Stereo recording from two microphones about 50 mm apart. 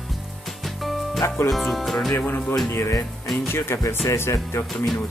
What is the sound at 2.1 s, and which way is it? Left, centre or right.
Speech, left.